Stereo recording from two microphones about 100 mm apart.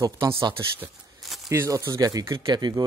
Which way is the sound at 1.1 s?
Centre (ahead or behind).